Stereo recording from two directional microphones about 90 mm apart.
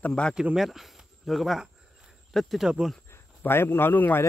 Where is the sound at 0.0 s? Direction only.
10° left (ahead or behind).